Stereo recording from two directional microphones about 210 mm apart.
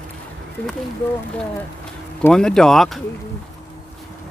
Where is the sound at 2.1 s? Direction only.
5° left (ahead or behind).